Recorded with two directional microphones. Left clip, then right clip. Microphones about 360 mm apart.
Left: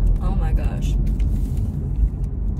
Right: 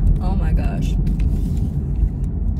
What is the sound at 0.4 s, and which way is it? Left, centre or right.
Vehicle, centre.